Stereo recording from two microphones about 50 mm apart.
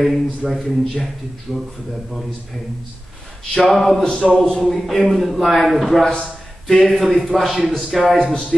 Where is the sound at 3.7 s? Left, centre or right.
Centre.